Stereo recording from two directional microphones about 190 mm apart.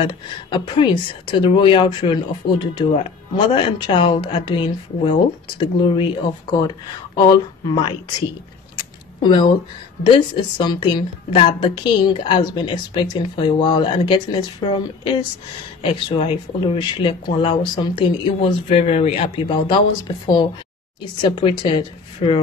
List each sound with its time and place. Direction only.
0.0 s speech: 25° left (ahead or behind)
8.7 s a sound: 25° left (ahead or behind)
10.0 s speech: 25° left (ahead or behind)
21.2 s speech: 25° left (ahead or behind)